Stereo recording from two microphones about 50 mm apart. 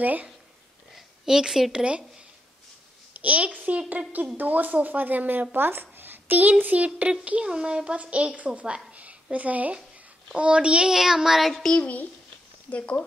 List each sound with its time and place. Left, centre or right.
0.0 s speech: right
0.9 s a sound: centre
1.7 s a woman's voice: right
3.2 s a woman's voice: right
5.6 s a sound: right
6.6 s a woman's voice: right
10.9 s child singing: centre
11.7 s speech: left